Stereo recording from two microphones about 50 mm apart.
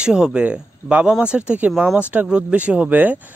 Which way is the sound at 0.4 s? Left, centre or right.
Right.